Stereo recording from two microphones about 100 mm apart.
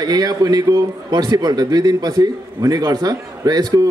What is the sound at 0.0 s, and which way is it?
A man's voice, 40° right (ahead or behind).